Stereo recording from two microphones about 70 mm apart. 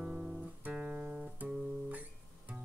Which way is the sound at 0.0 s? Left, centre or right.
Centre.